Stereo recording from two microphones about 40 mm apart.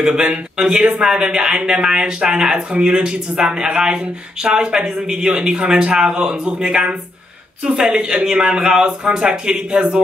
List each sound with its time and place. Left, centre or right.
0.0 s speech: right
7.9 s speech: right